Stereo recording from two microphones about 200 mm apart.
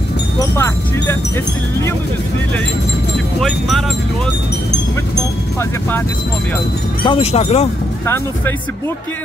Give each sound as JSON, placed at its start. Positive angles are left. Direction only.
{"t": 0.4, "sound": "speech", "side_deg": 15}
{"t": 3.3, "sound": "speech", "side_deg": 0}
{"t": 5.6, "sound": "speech", "side_deg": 10}
{"t": 7.1, "sound": "speech", "side_deg": 30}